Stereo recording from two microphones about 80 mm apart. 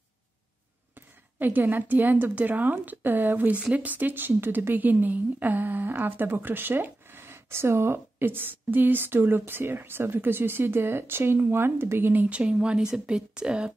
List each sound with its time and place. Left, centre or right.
0.9 s speech: right